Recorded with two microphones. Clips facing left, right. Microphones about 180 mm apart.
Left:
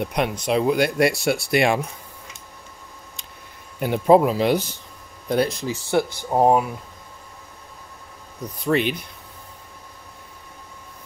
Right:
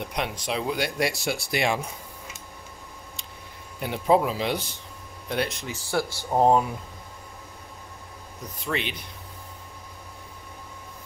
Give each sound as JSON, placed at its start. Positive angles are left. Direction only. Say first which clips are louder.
{"t": 0.0, "sound": "speech", "louder": "left 7 dB", "side_deg": 55}
{"t": 3.8, "sound": "speech", "louder": "left 6 dB", "side_deg": 50}
{"t": 5.3, "sound": "speech", "louder": "left 7 dB", "side_deg": 35}
{"t": 6.1, "sound": "speech", "louder": "left 1 dB", "side_deg": 15}
{"t": 8.6, "sound": "speech", "louder": "left 9 dB", "side_deg": 45}